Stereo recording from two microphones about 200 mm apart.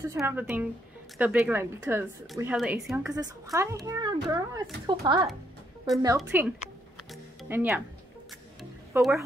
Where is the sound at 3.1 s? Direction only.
15° right (ahead or behind).